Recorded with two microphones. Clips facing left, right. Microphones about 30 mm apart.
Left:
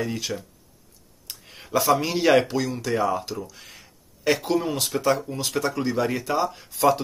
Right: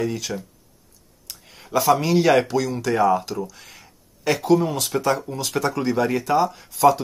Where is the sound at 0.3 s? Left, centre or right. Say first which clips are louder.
Right 2 dB; right.